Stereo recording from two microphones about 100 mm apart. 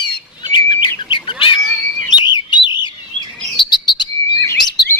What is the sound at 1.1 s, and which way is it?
Cat, 55° left (ahead or behind).